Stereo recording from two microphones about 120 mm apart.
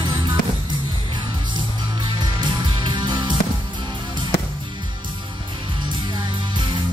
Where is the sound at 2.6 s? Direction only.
40° right (ahead or behind).